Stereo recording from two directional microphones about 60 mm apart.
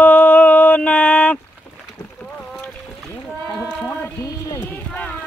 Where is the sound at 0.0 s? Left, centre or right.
Left.